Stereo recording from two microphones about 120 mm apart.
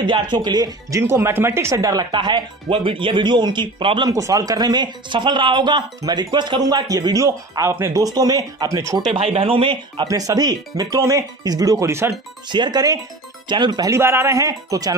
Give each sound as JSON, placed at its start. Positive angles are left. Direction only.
{"t": 0.0, "sound": "speech", "side_deg": -40}
{"t": 1.0, "sound": "speech", "side_deg": -20}
{"t": 4.1, "sound": "speech", "side_deg": -30}
{"t": 9.1, "sound": "speech", "side_deg": -50}
{"t": 10.0, "sound": "speech", "side_deg": -30}
{"t": 12.4, "sound": "speech", "side_deg": -40}
{"t": 13.9, "sound": "speech", "side_deg": -20}